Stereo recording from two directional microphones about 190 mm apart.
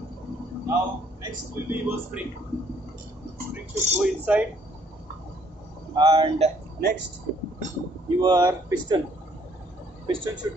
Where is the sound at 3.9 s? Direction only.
10° right (ahead or behind).